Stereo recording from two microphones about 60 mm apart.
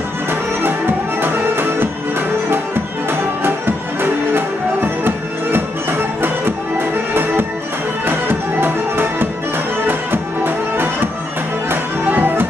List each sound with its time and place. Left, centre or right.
0.3 s music: right